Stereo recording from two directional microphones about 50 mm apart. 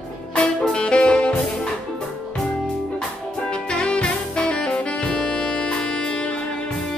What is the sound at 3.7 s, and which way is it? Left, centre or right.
Saxophone, centre.